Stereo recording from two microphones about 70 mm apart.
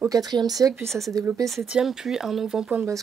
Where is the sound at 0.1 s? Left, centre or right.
Right.